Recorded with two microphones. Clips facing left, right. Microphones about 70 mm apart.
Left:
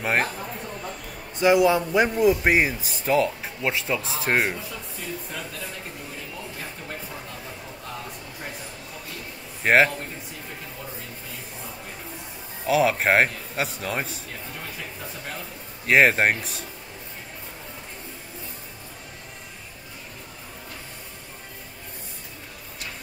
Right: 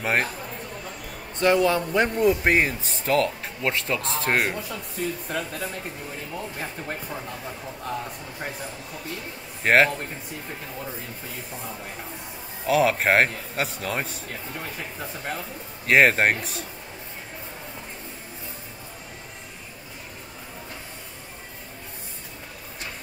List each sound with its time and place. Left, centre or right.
0.0 s a man's voice: centre
1.4 s a man's voice: centre
6.6 s speech: right
9.6 s a man's voice: centre
12.6 s a man's voice: centre
15.9 s a man's voice: centre